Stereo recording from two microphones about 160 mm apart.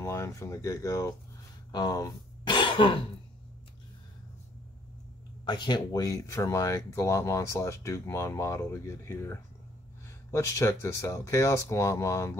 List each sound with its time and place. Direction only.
0.0 s speech: 15° left (ahead or behind); by 3.0 s 30° left (ahead or behind)
5.4 s speech: 25° left (ahead or behind)